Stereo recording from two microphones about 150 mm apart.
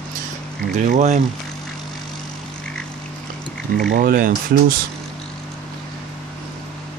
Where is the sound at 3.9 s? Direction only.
75° right (ahead or behind).